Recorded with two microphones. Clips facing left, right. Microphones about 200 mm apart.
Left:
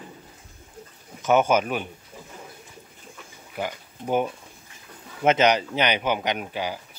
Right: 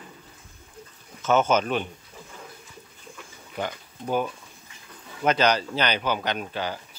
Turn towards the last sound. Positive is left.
turn(degrees=10)  # may be behind; listen again after turning